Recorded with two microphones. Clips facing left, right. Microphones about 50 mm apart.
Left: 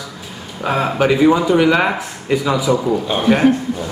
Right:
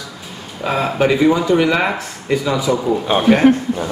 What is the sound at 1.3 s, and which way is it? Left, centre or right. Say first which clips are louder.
Speech: left 1 dB; centre.